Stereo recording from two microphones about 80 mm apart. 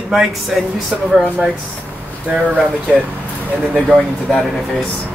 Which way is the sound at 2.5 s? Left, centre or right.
Centre.